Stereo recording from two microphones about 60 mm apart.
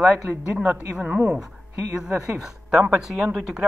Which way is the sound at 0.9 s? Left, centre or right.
Centre.